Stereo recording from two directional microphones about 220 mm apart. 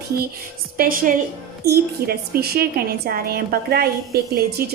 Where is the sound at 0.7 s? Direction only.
40° right (ahead or behind).